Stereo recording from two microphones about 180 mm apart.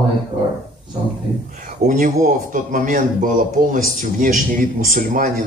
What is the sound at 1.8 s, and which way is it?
A man's voice, 45° right (ahead or behind).